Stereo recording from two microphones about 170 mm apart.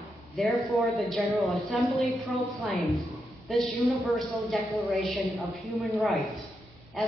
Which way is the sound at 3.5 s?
Centre (ahead or behind).